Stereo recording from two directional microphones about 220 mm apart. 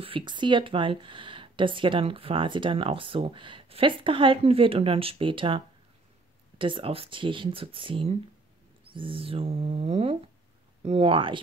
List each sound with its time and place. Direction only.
0.0 s speech: 20° right (ahead or behind)
6.6 s speech: 25° right (ahead or behind)